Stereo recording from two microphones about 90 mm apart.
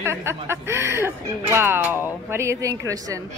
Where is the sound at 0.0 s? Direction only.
30° right (ahead or behind).